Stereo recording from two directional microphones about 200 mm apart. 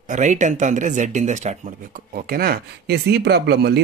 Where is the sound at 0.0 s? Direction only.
40° right (ahead or behind).